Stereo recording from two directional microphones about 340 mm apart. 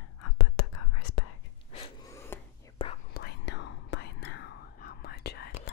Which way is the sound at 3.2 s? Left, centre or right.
Left.